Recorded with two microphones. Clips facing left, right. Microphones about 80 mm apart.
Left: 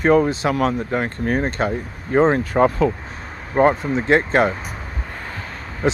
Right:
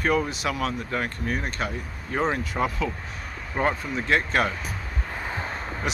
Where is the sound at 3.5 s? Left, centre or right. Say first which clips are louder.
Left 9 dB; left.